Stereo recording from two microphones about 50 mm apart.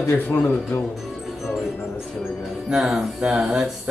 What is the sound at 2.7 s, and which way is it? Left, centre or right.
Speech, centre.